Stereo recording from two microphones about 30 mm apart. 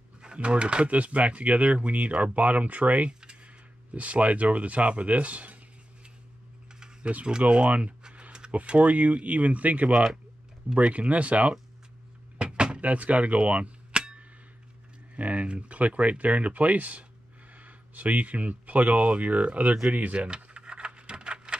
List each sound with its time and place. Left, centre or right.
0.4 s speech: right
0.8 s speech: right
3.1 s tick-tock: right
3.9 s speech: right
7.0 s speech: right
7.2 s speech: right
12.4 s door: right
12.8 s speech: right
13.4 s arrow: right
15.1 s speech: right
15.8 s speech: right
20.2 s a sound: right